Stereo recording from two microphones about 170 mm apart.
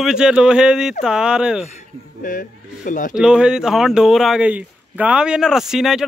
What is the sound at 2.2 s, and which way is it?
Speech, 50° left (ahead or behind).